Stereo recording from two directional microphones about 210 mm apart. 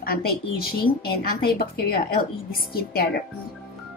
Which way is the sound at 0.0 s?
45° left (ahead or behind).